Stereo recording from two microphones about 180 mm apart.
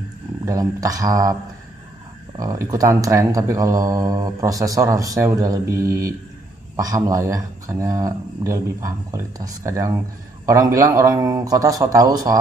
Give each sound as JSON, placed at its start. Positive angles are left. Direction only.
{"t": 0.5, "sound": "speech", "side_deg": -20}
{"t": 2.3, "sound": "speech", "side_deg": -20}